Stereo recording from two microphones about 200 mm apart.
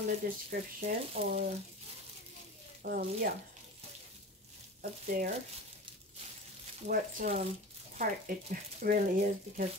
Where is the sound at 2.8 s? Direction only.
50° right (ahead or behind).